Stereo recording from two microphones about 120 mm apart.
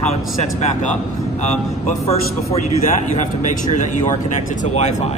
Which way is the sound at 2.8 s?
90° left.